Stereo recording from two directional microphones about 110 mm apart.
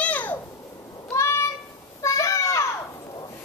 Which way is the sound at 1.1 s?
25° left (ahead or behind).